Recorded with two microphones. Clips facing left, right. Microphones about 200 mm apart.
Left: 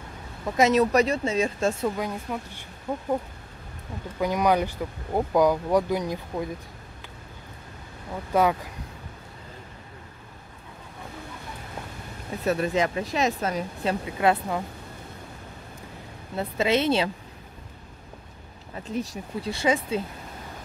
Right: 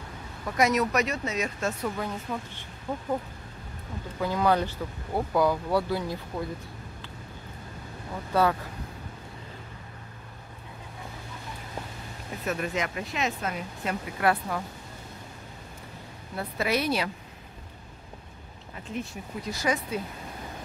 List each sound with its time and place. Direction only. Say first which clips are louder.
0.6 s speech: left 5 dB; 25° left (ahead or behind)
2.0 s speech: left 2 dB; 10° left (ahead or behind)
4.2 s speech: left 2 dB; 15° left (ahead or behind)
8.3 s speech: left 2 dB; 15° left (ahead or behind)
12.4 s speech: left 6 dB; 35° left (ahead or behind)
14.0 s speech: left 2 dB; 25° left (ahead or behind)
16.3 s speech: left 4 dB; 25° left (ahead or behind)
18.9 s speech: left 4 dB; 40° left (ahead or behind)